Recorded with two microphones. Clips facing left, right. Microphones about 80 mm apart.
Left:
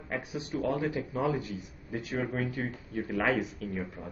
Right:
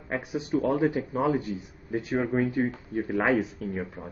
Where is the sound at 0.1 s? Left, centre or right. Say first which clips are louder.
Right 7 dB; right.